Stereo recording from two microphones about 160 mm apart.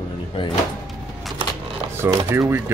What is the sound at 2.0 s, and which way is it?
Speech, 15° right (ahead or behind).